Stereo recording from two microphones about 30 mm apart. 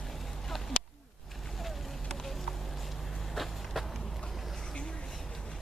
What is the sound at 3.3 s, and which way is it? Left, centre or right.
Vehicle, centre.